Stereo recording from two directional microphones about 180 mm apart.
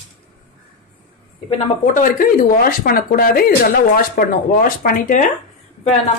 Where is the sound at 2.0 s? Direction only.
50° left (ahead or behind).